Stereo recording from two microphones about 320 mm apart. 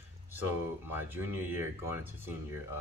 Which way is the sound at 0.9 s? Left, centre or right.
Centre.